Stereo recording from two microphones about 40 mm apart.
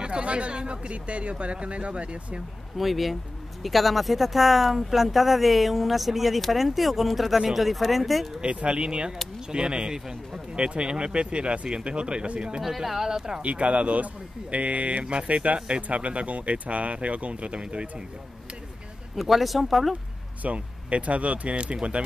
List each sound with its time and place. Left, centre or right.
0.0 s speech: right
2.8 s speech: centre
8.4 s speech: right
12.6 s speech: centre
13.4 s speech: right
19.1 s speech: centre
20.4 s speech: right